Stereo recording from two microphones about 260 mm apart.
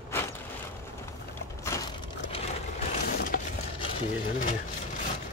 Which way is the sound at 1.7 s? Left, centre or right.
Centre.